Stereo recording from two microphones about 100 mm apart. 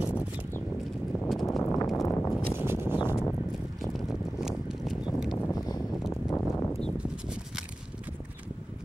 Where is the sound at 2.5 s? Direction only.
25° right (ahead or behind).